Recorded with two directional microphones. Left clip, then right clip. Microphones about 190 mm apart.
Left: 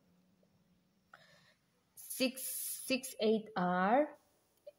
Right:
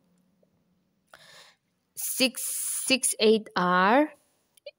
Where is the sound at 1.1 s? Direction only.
50° right (ahead or behind).